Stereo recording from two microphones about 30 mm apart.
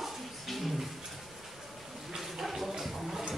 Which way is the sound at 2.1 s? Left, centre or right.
Centre.